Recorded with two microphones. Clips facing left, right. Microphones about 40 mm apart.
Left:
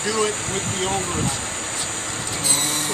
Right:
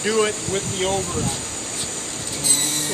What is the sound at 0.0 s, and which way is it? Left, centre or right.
Speech, right.